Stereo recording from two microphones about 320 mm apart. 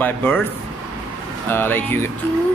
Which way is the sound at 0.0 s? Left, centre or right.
Centre.